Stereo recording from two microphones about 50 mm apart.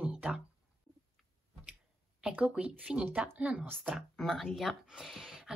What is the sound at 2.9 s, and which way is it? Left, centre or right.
Speech, centre.